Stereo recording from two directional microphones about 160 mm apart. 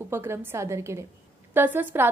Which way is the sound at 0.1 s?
15° right (ahead or behind).